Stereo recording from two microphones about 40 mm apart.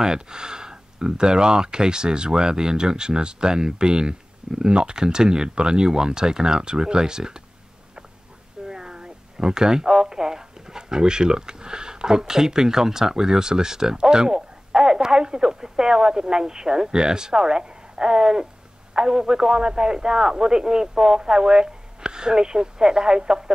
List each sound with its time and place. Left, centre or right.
0.0 s speech: centre
8.6 s a man's voice: centre